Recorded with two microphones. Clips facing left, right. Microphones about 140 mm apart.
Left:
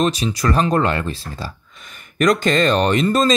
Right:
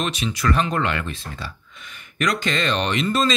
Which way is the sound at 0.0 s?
35° left (ahead or behind).